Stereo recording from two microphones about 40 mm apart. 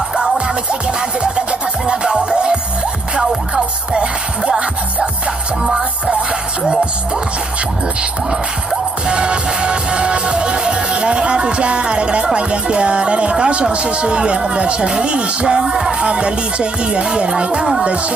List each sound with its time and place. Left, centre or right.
1.2 s music: right
9.0 s music: right
12.4 s speech: right
16.0 s speech: right